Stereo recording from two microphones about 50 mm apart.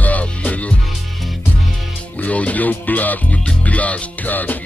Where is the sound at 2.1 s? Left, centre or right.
Left.